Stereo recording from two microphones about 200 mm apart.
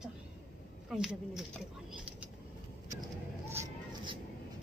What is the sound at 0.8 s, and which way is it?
Speech, centre (ahead or behind).